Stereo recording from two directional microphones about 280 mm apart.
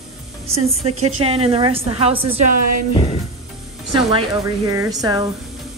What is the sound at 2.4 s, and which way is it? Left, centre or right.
Speech, right.